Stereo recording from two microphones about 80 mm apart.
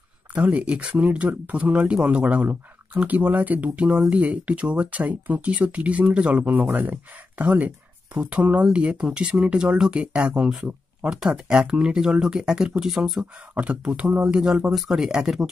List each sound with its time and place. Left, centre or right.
0.3 s speech: centre
13.6 s speech: centre